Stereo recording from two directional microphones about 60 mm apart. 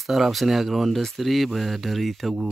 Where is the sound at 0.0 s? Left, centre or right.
Centre.